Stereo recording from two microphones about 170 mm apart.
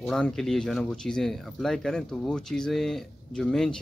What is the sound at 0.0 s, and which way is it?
Speech, 5° left (ahead or behind).